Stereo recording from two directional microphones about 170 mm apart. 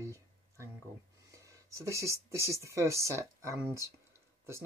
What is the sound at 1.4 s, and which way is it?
Speech, 20° right (ahead or behind).